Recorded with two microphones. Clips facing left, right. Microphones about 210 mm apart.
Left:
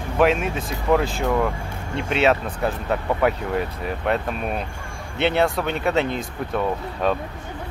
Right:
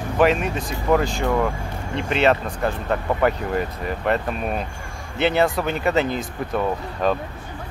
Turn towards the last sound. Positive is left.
turn(degrees=0)  # may be behind; listen again after turning